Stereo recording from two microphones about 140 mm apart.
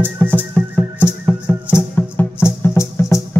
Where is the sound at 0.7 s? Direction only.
15° left (ahead or behind).